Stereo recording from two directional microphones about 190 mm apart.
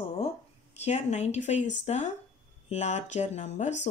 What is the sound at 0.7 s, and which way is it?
Speech, 35° left (ahead or behind).